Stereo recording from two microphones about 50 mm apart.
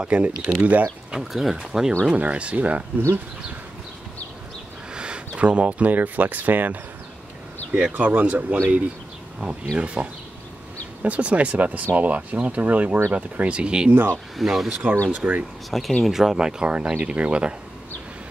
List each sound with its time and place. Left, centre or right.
0.0 s speech: right
1.1 s speech: centre
2.0 s speech: right
4.9 s speech: centre
14.3 s speech: centre
15.0 s speech: right
15.7 s speech: centre
16.1 s speech: centre